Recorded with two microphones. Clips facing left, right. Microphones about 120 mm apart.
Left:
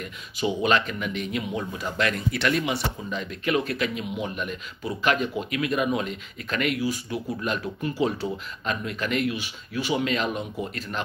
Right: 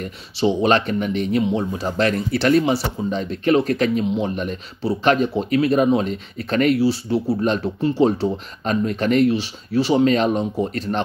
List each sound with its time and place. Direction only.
0.0 s speech: 35° right (ahead or behind)